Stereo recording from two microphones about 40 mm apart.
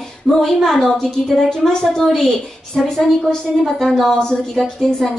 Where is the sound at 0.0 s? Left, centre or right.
Centre.